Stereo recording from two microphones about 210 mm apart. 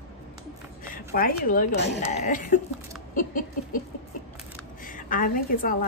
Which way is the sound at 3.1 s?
40° left (ahead or behind).